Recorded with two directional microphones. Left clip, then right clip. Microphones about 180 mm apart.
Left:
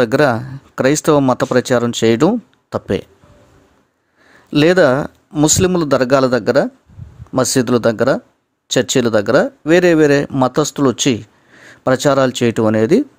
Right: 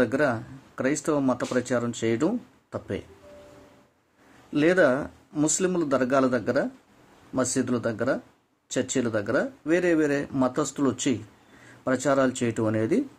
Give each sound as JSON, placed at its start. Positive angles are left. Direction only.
{"t": 0.0, "sound": "speech", "side_deg": 60}
{"t": 4.5, "sound": "speech", "side_deg": 60}